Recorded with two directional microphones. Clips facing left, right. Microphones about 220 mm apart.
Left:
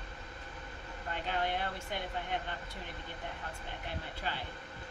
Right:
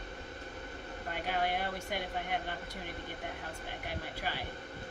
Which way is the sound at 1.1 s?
10° right (ahead or behind).